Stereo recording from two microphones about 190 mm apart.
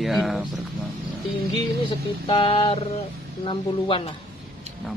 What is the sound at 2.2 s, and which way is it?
Speech, 30° left (ahead or behind).